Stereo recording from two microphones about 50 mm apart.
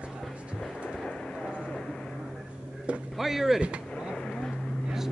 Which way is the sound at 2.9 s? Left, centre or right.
Right.